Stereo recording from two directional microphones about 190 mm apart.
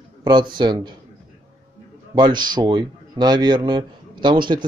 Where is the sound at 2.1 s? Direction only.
25° right (ahead or behind).